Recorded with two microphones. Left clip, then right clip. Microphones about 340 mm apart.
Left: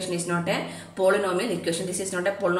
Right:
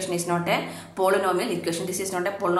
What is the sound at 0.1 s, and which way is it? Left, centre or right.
A woman's voice, centre.